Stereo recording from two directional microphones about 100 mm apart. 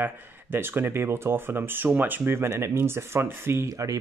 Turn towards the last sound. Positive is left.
turn(degrees=-35)  # may be behind; listen again after turning